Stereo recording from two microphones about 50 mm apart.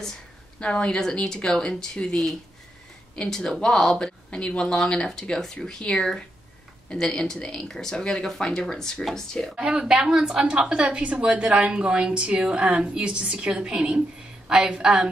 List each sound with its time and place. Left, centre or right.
0.0 s speech: centre
9.6 s a woman's voice: right
9.8 s a woman's voice: centre